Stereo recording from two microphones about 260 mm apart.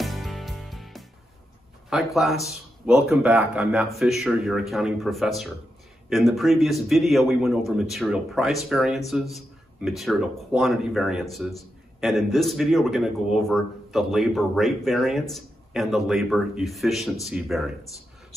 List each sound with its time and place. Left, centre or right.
0.0 s music: centre
1.9 s a man's voice: centre